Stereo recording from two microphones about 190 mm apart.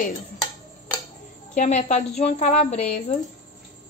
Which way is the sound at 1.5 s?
40° left (ahead or behind).